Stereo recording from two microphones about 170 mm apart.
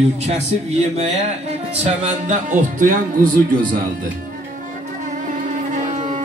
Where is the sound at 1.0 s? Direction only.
40° right (ahead or behind).